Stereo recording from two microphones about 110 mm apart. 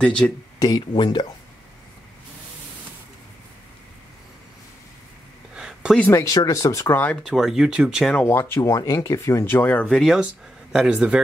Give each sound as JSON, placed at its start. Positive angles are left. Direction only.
{"t": 0.0, "sound": "speech", "side_deg": 10}
{"t": 0.6, "sound": "speech", "side_deg": 35}
{"t": 5.5, "sound": "a sound", "side_deg": -5}
{"t": 5.9, "sound": "speech", "side_deg": 15}
{"t": 6.2, "sound": "speech", "side_deg": 30}
{"t": 7.2, "sound": "speech", "side_deg": -5}
{"t": 8.0, "sound": "speech", "side_deg": 10}
{"t": 8.3, "sound": "speech", "side_deg": 20}
{"t": 9.8, "sound": "speech", "side_deg": 0}